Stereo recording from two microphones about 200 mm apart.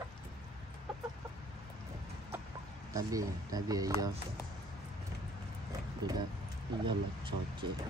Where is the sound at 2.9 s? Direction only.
15° right (ahead or behind).